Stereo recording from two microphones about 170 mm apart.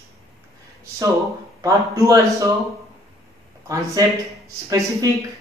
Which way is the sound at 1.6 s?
20° right (ahead or behind).